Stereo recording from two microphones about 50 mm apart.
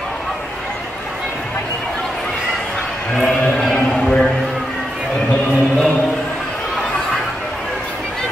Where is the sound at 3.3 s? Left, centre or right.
Centre.